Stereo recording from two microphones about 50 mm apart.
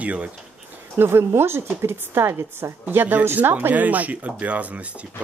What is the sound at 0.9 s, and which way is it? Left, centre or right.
A woman's voice, right.